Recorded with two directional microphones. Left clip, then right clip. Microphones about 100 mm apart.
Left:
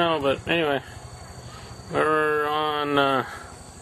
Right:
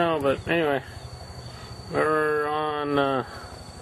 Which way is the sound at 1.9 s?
5° left (ahead or behind).